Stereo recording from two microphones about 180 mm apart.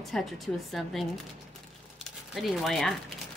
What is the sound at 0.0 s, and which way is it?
Speech, centre (ahead or behind).